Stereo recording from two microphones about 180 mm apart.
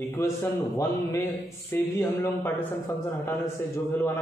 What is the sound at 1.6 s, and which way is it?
A man's voice, 15° left (ahead or behind).